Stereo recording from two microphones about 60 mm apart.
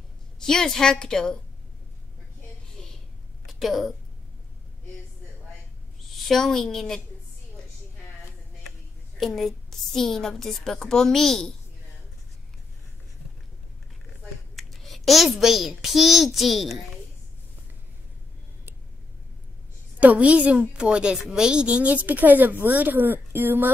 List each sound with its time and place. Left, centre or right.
0.4 s a woman's voice: centre
2.8 s a sound: centre
3.6 s a woman's voice: centre
6.1 s a woman's voice: centre
9.2 s a woman's voice: centre
14.5 s a child's voice: centre
20.0 s speech: right